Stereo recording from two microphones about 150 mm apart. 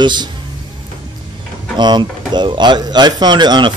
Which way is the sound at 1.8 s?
30° right (ahead or behind).